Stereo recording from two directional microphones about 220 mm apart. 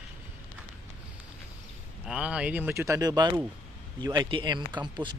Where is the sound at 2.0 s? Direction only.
5° right (ahead or behind).